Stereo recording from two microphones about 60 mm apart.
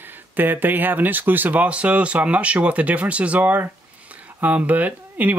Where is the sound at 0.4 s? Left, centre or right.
Right.